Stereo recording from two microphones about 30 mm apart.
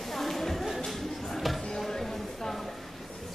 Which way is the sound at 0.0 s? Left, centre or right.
Centre.